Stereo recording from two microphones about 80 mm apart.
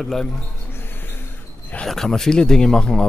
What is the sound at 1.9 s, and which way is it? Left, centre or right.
Speech, centre.